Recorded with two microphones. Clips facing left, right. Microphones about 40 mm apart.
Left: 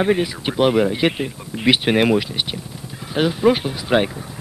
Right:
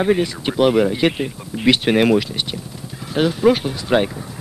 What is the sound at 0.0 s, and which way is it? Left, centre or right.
Speech, centre.